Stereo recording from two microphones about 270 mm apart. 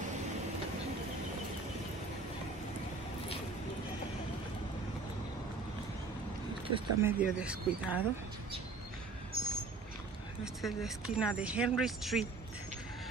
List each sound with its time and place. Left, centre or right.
6.7 s speech: centre
9.3 s a sound: right
10.4 s speech: centre